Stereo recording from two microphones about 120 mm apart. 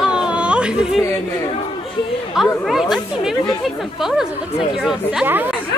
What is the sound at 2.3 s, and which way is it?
A woman's voice, centre (ahead or behind).